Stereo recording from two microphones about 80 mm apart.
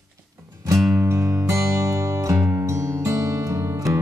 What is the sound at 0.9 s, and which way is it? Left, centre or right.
Music, right.